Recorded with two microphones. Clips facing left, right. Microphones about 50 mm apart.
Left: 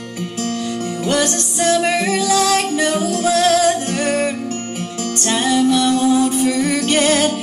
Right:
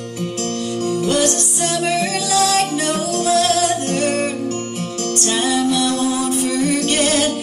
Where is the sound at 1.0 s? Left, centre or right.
Centre.